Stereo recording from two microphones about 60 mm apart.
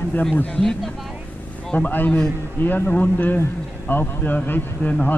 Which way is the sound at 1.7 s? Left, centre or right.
Left.